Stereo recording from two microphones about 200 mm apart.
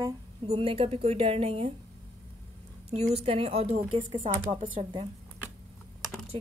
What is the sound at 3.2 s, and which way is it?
Speech, 30° right (ahead or behind).